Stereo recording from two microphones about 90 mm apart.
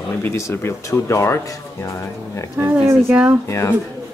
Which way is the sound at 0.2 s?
30° left (ahead or behind).